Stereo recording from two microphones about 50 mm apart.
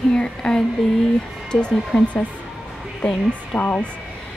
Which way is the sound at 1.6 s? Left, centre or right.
Centre.